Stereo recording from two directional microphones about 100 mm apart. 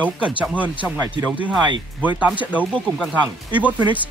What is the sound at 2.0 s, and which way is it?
Speech, 15° right (ahead or behind).